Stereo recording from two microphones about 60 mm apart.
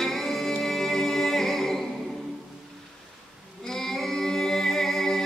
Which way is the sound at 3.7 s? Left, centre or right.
Centre.